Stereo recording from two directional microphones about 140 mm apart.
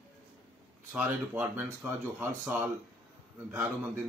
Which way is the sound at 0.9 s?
15° right (ahead or behind).